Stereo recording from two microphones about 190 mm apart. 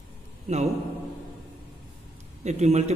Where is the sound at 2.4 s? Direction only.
35° right (ahead or behind).